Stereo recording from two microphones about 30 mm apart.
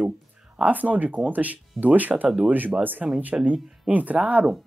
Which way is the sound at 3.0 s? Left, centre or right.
Centre.